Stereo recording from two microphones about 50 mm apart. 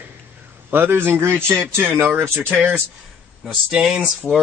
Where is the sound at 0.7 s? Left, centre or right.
Right.